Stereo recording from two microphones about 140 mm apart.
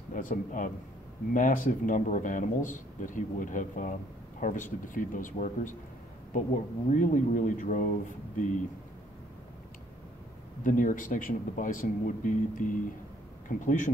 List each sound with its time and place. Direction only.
0.1 s speech: 70° left (ahead or behind)
10.6 s speech: 65° left (ahead or behind)